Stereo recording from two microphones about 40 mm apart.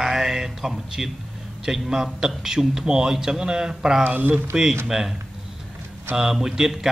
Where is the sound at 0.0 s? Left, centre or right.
Centre.